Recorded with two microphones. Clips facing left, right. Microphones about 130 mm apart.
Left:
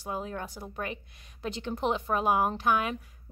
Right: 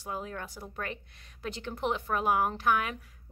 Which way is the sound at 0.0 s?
20° left (ahead or behind).